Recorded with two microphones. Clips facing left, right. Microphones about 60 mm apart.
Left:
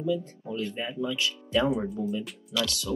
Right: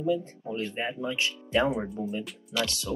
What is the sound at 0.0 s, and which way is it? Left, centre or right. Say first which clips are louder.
Speech: right 1 dB; right.